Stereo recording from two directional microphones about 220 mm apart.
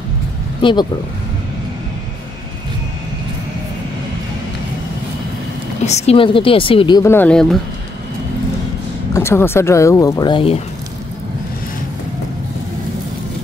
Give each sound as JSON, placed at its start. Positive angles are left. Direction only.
{"t": 0.6, "sound": "speech", "side_deg": 20}
{"t": 5.9, "sound": "a woman's voice", "side_deg": 30}
{"t": 9.1, "sound": "speech", "side_deg": 10}